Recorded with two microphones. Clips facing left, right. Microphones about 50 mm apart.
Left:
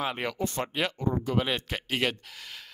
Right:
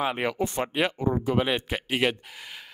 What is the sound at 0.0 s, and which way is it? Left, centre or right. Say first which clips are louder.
Speech: right 4 dB; centre.